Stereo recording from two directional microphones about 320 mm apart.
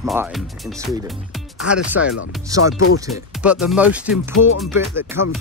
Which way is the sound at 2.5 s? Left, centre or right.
Centre.